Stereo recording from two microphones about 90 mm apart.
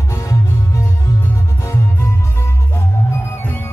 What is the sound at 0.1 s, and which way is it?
Music, 35° left (ahead or behind).